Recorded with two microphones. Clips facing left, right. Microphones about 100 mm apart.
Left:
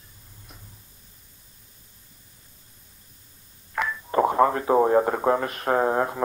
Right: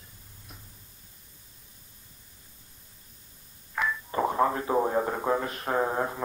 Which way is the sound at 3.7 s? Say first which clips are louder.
Left 5 dB; 75° left (ahead or behind).